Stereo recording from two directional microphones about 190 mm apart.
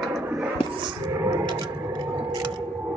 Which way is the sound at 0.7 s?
25° right (ahead or behind).